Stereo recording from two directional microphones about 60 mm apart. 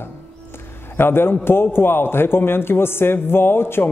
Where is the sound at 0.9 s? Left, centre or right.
Left.